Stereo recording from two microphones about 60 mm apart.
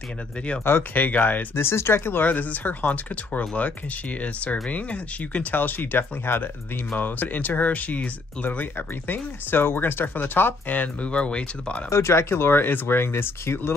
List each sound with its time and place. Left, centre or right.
0.9 s speech: left
2.3 s speech: left
5.5 s speech: left
11.9 s speech: left